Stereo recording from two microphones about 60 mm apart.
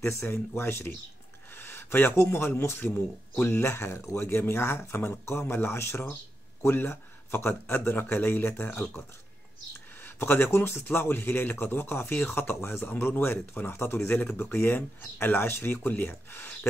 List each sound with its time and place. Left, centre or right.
0.0 s speech: left
10.0 s speech: left
12.8 s speech: left